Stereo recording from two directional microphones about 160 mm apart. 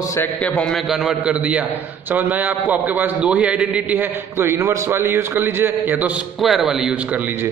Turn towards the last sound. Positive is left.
turn(degrees=-5)  # may be behind; listen again after turning